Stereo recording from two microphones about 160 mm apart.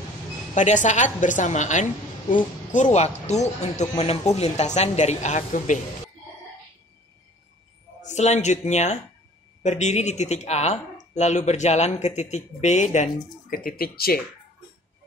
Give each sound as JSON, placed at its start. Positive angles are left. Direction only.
{"t": 0.6, "sound": "speech", "side_deg": 50}
{"t": 8.0, "sound": "speech", "side_deg": 45}